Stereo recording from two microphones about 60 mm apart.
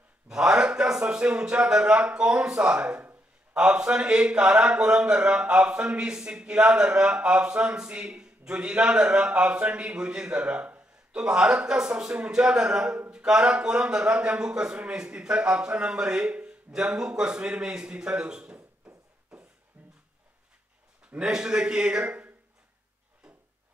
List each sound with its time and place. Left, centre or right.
0.3 s a man's voice: centre
19.7 s a sound: right
21.2 s a man's voice: centre